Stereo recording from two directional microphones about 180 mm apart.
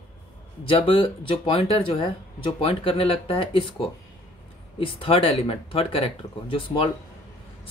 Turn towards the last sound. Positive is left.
turn(degrees=30)  # may be behind; listen again after turning